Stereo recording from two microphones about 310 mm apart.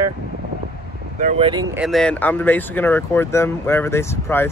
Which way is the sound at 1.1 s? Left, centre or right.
Right.